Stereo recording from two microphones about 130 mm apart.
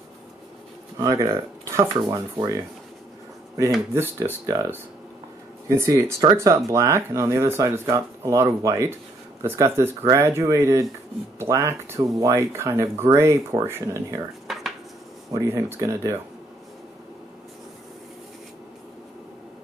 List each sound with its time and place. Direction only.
0.9 s speech: 25° right (ahead or behind)
4.5 s speech: 20° right (ahead or behind)
5.8 s speech: 20° right (ahead or behind)
14.5 s dishes: centre (ahead or behind)
15.3 s speech: 25° right (ahead or behind)